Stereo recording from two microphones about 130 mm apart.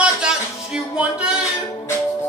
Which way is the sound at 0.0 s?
5° right (ahead or behind).